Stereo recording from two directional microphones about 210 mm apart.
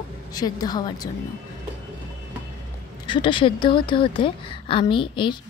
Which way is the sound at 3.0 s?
20° left (ahead or behind).